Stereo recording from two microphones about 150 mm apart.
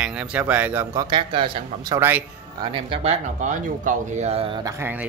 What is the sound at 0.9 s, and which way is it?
Speech, 30° right (ahead or behind).